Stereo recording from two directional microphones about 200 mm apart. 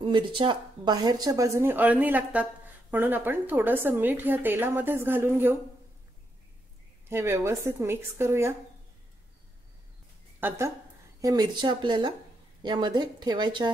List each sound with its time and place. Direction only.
0.0 s a woman's voice: 25° right (ahead or behind)
7.1 s a woman's voice: 15° right (ahead or behind)
10.4 s a woman's voice: 10° right (ahead or behind)